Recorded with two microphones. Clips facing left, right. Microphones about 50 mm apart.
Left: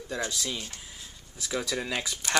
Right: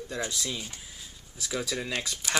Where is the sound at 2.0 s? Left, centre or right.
Centre.